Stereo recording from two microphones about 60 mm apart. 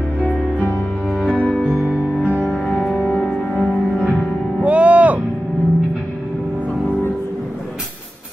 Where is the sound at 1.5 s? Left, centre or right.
Centre.